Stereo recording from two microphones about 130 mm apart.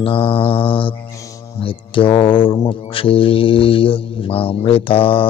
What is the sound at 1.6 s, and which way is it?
Speech, 40° left (ahead or behind).